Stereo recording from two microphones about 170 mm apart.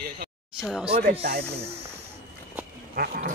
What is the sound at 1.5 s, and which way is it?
Speech, 35° right (ahead or behind).